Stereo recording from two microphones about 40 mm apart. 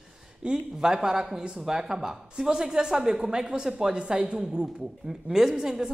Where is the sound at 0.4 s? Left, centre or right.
Centre.